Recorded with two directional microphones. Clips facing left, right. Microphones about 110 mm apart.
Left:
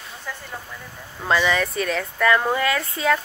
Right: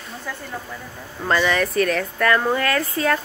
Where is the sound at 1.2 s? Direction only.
5° left (ahead or behind).